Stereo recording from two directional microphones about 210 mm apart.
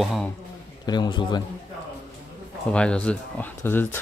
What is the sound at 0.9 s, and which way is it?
Speech, 20° left (ahead or behind).